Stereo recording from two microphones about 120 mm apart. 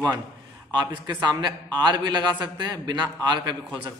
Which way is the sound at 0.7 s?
35° right (ahead or behind).